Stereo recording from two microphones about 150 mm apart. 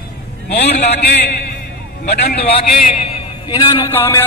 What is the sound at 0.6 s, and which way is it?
Speech, 90° left.